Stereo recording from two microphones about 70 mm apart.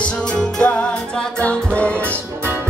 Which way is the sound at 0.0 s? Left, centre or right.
Centre.